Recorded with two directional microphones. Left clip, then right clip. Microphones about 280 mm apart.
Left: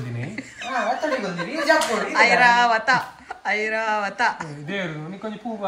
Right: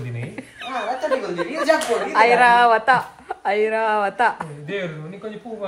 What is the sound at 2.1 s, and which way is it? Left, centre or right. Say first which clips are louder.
Speech: right 2 dB; centre.